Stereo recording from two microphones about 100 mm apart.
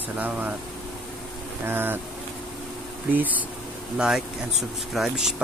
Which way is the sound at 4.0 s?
5° right (ahead or behind).